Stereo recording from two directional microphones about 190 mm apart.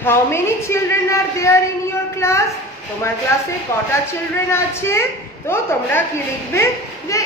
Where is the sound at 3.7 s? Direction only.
15° left (ahead or behind).